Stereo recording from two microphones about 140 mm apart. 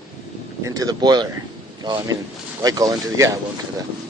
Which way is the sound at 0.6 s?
25° right (ahead or behind).